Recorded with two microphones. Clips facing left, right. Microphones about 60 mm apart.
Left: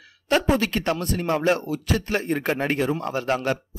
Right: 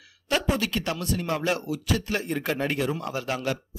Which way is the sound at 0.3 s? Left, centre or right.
Left.